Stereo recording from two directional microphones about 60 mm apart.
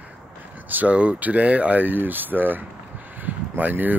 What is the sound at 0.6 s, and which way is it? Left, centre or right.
Speech, right.